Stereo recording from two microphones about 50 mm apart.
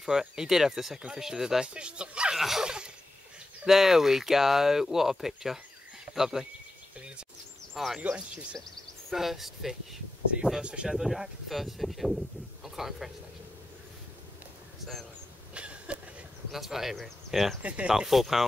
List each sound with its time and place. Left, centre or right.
0.0 s speech: centre
2.3 s speech: centre
7.7 s speech: centre
8.0 s speech: right
9.1 s speech: centre
15.5 s a sound: right
16.5 s speech: centre
17.6 s speech: right
17.8 s speech: centre